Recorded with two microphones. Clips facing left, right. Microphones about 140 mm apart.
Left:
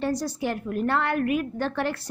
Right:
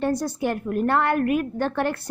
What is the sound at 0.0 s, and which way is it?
A woman's voice, 55° right (ahead or behind).